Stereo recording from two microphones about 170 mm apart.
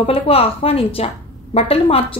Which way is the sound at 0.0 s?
35° left (ahead or behind).